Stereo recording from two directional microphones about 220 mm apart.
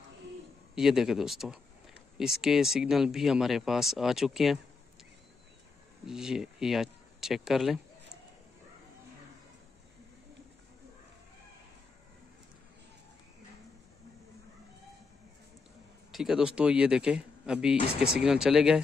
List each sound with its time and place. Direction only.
0.7 s speech: centre (ahead or behind)
6.0 s speech: centre (ahead or behind)
16.1 s speech: centre (ahead or behind)
17.7 s speech: 25° left (ahead or behind)
18.1 s speech: 5° right (ahead or behind)